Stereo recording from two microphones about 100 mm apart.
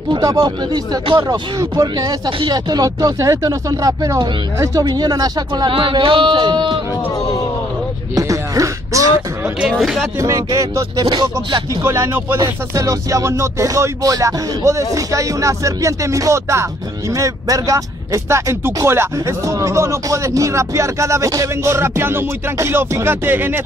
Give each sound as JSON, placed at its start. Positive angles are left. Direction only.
{"t": 0.2, "sound": "music", "side_deg": -35}
{"t": 5.7, "sound": "speech", "side_deg": -55}
{"t": 8.1, "sound": "a sound", "side_deg": -35}
{"t": 9.7, "sound": "speech", "side_deg": 0}
{"t": 10.2, "sound": "music", "side_deg": -35}
{"t": 11.1, "sound": "speech", "side_deg": -45}
{"t": 11.8, "sound": "speech", "side_deg": -25}
{"t": 12.4, "sound": "music", "side_deg": -35}
{"t": 17.1, "sound": "speech", "side_deg": -35}